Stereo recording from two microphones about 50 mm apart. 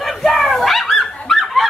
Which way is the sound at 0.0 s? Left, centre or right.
Centre.